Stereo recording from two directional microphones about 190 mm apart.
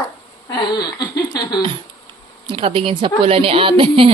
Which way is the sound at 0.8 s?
20° left (ahead or behind).